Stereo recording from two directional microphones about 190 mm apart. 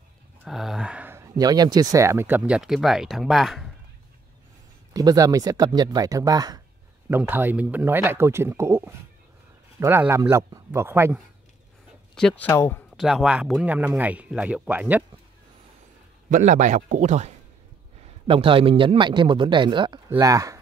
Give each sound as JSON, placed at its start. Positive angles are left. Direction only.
{"t": 0.5, "sound": "speech", "side_deg": 0}
{"t": 4.9, "sound": "speech", "side_deg": -20}
{"t": 12.2, "sound": "speech", "side_deg": 5}
{"t": 12.9, "sound": "speech", "side_deg": 0}
{"t": 16.3, "sound": "a man's voice", "side_deg": -40}
{"t": 18.2, "sound": "speech", "side_deg": -25}